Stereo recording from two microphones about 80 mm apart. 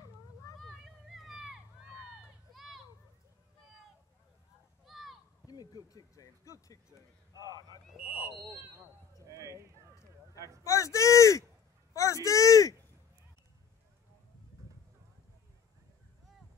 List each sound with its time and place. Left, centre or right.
0.7 s run: centre
4.8 s a sound: centre
5.5 s a sound: left
5.9 s speech: left
7.3 s speech: right
7.9 s speech: centre
8.3 s speech: right
10.6 s a sound: left
11.9 s speech: left